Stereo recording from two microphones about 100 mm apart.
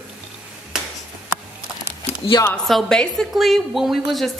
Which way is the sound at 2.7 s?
5° left (ahead or behind).